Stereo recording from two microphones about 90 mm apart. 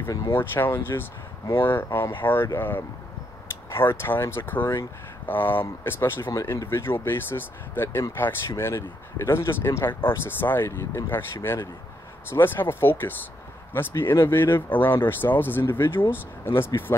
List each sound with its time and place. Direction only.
0.3 s speech: 25° left (ahead or behind)
6.3 s speech: 35° left (ahead or behind)